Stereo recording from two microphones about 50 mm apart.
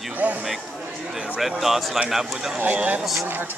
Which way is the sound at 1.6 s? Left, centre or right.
Centre.